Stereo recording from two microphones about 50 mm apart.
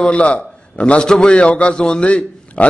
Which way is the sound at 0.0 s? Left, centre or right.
Left.